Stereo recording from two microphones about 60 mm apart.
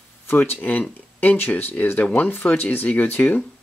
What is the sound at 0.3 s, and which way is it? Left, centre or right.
Speech, left.